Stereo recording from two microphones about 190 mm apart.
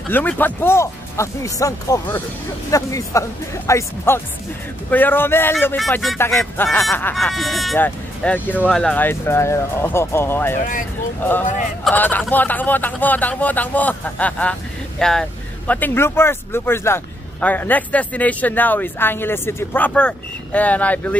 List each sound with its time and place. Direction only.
0.1 s speech: 10° left (ahead or behind)
11.8 s speech: 10° left (ahead or behind)